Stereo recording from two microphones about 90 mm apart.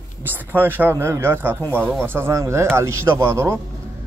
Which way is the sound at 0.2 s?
20° right (ahead or behind).